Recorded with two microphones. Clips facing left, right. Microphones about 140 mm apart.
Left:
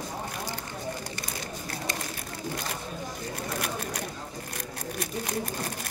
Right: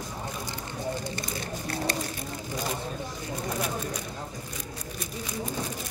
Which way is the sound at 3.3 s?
70° left (ahead or behind).